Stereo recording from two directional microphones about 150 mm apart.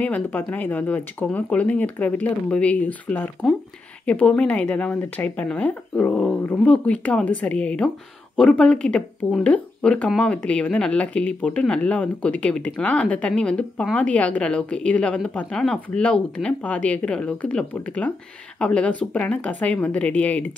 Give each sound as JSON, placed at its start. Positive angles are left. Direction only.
{"t": 0.0, "sound": "speech", "side_deg": 10}